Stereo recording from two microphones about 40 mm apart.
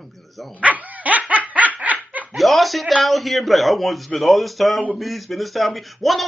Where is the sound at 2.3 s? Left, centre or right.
Centre.